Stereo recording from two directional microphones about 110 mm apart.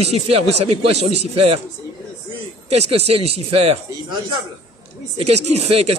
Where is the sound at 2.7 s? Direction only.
65° right (ahead or behind).